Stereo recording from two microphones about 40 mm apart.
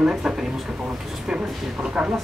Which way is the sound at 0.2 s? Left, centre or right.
Centre.